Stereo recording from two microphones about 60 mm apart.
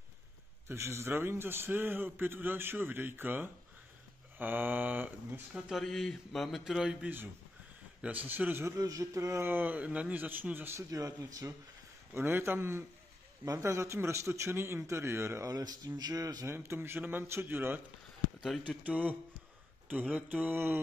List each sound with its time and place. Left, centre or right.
0.7 s a man's voice: right
5.7 s a man's voice: centre
8.0 s speech: right
8.7 s a man's voice: right
10.8 s speech: right
12.1 s a man's voice: right
13.5 s a man's voice: right
15.4 s speech: right
16.4 s a man's voice: right
18.6 s a man's voice: right